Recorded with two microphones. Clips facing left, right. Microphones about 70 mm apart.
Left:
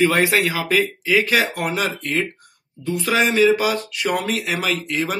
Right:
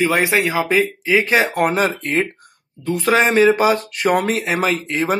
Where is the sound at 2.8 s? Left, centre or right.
Right.